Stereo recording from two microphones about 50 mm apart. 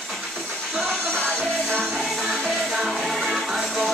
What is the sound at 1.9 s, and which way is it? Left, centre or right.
Music, centre.